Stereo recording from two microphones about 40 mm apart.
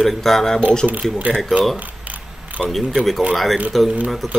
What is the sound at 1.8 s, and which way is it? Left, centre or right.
Camera, right.